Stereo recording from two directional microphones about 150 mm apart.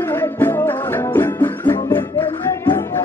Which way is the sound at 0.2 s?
15° left (ahead or behind).